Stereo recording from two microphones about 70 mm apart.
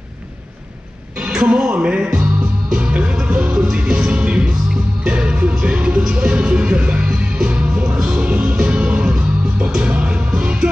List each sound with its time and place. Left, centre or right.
1.1 s music: centre